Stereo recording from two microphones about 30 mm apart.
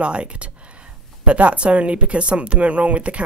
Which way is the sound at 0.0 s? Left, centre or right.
Right.